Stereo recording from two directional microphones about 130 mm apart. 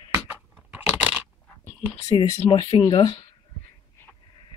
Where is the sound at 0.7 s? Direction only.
5° right (ahead or behind).